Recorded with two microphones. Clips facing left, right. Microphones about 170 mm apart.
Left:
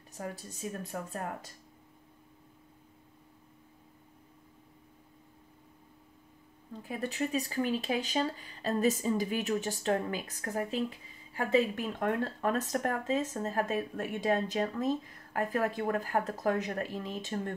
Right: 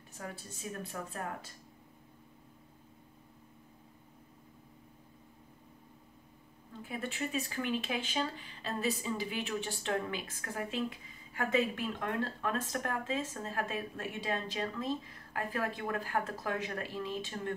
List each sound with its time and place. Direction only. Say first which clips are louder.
0.1 s speech: left 4 dB; 40° left (ahead or behind)
6.8 s speech: left 4 dB; 40° left (ahead or behind)